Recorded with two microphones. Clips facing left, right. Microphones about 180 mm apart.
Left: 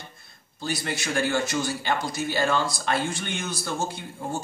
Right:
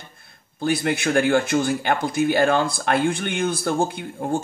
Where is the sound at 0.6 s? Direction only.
55° right (ahead or behind).